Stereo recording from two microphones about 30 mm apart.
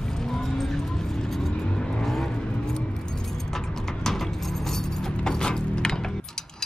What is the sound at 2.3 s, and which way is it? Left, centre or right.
Vehicle, left.